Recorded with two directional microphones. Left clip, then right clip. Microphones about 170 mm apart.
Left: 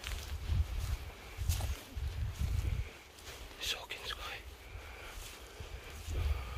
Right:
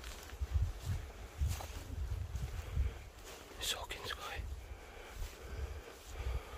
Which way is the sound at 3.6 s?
60° right (ahead or behind).